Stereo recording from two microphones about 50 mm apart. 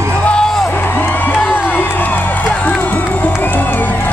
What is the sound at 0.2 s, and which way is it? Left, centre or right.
Music, left.